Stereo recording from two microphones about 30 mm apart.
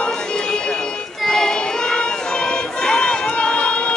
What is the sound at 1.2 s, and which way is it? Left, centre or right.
Child singing, centre.